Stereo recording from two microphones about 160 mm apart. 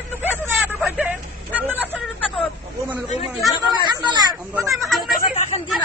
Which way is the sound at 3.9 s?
25° right (ahead or behind).